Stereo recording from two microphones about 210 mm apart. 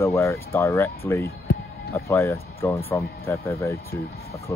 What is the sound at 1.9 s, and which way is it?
Speech, 10° left (ahead or behind).